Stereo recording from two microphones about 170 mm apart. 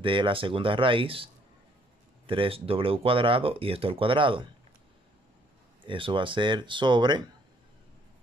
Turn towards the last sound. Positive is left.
turn(degrees=-25)  # may be behind; listen again after turning